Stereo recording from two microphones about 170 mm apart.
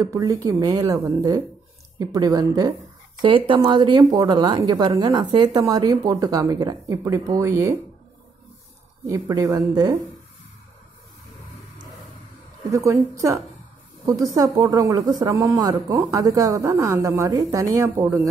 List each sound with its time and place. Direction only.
0.0 s speech: 20° right (ahead or behind)
9.0 s speech: 20° right (ahead or behind)
12.7 s a woman's voice: 15° right (ahead or behind)
14.0 s speech: 20° right (ahead or behind)